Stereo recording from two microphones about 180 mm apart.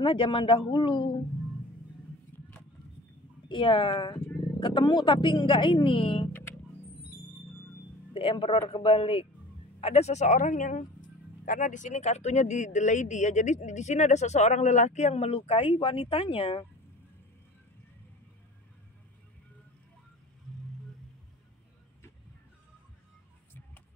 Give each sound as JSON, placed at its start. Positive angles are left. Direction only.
{"t": 0.0, "sound": "speech", "side_deg": 25}
{"t": 3.4, "sound": "speech", "side_deg": 25}
{"t": 8.1, "sound": "speech", "side_deg": 30}